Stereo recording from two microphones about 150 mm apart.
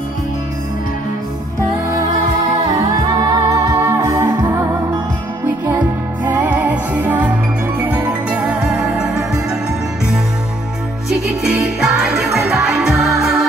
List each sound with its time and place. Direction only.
2.9 s music: 25° right (ahead or behind)
5.7 s music: 10° right (ahead or behind)
11.1 s music: 5° right (ahead or behind)